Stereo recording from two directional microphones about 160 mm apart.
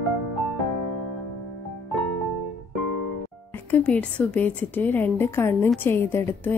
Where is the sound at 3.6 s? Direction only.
10° left (ahead or behind).